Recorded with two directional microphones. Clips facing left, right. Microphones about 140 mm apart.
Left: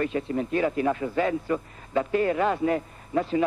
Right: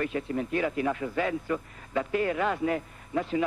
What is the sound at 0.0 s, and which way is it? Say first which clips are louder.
A man's voice: left 3 dB; 30° left (ahead or behind).